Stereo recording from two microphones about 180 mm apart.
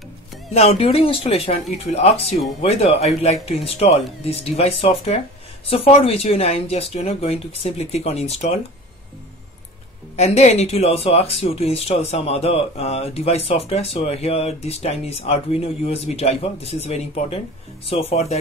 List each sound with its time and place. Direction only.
0.5 s speech: 35° left (ahead or behind)
10.1 s speech: 35° left (ahead or behind)